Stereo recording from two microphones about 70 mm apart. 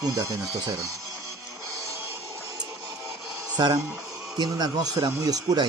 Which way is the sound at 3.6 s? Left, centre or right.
Right.